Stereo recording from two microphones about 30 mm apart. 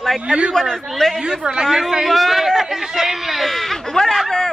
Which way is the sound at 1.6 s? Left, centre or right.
Centre.